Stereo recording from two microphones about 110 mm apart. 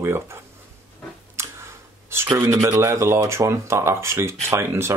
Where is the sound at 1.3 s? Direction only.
25° right (ahead or behind).